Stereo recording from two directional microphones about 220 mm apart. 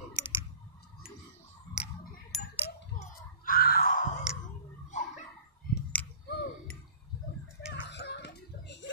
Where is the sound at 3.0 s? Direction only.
40° left (ahead or behind).